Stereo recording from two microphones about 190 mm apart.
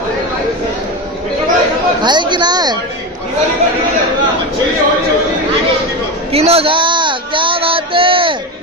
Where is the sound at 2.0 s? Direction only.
25° right (ahead or behind).